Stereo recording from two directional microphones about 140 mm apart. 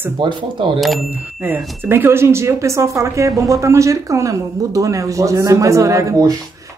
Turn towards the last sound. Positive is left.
turn(degrees=-25)  # may be behind; listen again after turning